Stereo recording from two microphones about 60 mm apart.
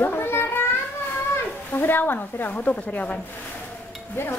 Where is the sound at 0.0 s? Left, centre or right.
Left.